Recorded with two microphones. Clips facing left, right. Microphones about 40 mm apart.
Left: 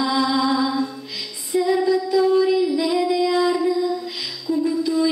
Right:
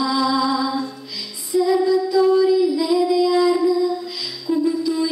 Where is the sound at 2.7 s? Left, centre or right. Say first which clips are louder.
Right 2 dB; left.